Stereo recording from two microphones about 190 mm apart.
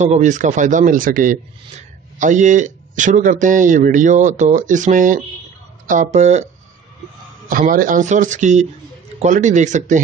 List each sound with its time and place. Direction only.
0.0 s a man's voice: 40° right (ahead or behind)